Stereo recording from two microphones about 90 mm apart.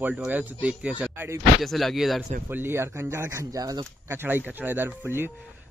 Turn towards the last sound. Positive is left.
turn(degrees=-25)  # may be behind; listen again after turning